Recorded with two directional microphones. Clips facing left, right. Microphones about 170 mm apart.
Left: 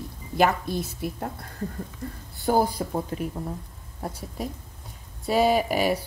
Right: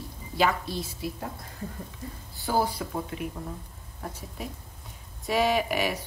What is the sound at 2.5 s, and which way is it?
A woman's voice, 45° left (ahead or behind).